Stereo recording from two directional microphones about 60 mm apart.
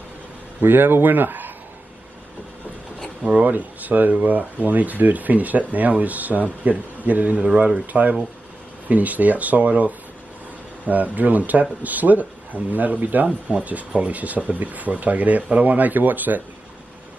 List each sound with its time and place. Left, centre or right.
0.6 s speech: right
3.3 s speech: right